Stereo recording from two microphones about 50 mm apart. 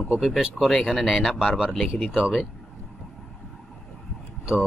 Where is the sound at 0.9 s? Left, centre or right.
Centre.